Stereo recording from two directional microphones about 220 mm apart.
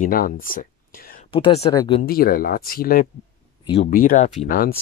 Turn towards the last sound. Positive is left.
turn(degrees=40)  # may be behind; listen again after turning